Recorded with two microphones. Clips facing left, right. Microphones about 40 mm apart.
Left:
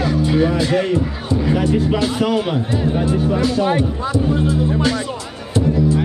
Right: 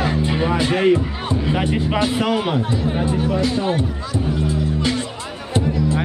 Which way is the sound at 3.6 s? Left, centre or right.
Left.